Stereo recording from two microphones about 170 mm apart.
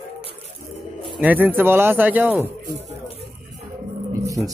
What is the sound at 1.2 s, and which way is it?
Speech, 10° right (ahead or behind).